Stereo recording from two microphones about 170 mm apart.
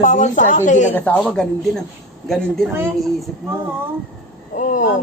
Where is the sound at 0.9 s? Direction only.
10° left (ahead or behind).